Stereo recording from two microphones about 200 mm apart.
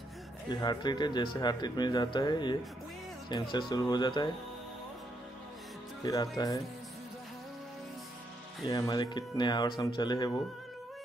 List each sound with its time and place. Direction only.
0.5 s speech: 20° left (ahead or behind)
6.0 s speech: 20° left (ahead or behind)
8.6 s speech: 20° left (ahead or behind)